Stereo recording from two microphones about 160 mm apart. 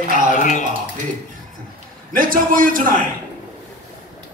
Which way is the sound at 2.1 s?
60° right (ahead or behind).